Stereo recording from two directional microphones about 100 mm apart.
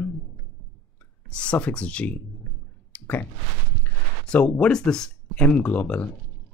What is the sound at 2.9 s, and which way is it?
Clicking, 20° left (ahead or behind).